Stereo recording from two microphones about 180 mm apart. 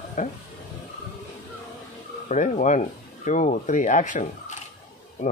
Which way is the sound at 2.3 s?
45° left (ahead or behind).